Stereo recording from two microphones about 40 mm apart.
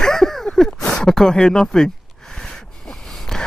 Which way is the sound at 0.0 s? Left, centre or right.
Centre.